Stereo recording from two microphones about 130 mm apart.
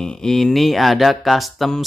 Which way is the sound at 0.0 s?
5° left (ahead or behind).